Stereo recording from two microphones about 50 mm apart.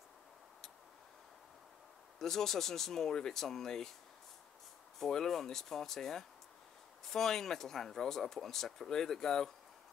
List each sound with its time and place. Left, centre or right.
2.1 s speech: centre
4.9 s speech: centre